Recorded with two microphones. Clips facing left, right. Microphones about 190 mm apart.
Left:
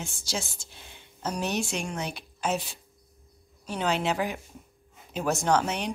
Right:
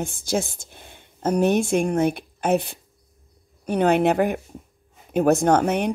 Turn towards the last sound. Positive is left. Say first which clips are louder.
# right 7 dB
turn(degrees=-55)  # may be behind; listen again after turning